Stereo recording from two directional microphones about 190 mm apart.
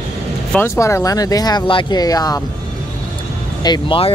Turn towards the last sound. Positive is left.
turn(degrees=25)  # may be behind; listen again after turning